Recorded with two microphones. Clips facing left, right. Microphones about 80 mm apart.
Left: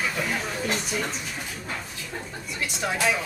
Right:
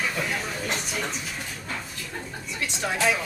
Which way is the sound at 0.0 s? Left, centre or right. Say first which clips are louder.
Left 1 dB; centre.